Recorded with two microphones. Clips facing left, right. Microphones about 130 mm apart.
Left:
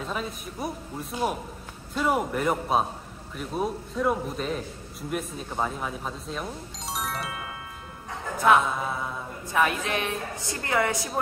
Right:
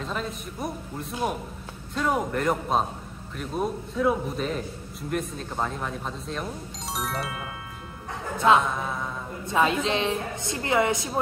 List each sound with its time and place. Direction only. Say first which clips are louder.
0.0 s speech: right 1 dB; 5° left (ahead or behind)
8.6 s mantra: even; 5° left (ahead or behind)
9.5 s a woman's voice: right 2 dB; 20° right (ahead or behind)